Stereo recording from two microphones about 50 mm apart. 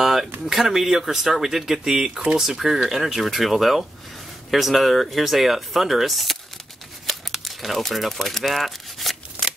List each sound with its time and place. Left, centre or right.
0.0 s a sound: centre
0.5 s speech: centre
9.4 s scissors: right